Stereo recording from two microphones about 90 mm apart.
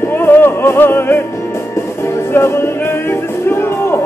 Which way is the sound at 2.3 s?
30° left (ahead or behind).